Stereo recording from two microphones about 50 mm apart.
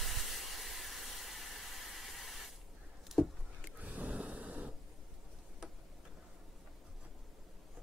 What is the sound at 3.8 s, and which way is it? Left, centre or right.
Gasp, right.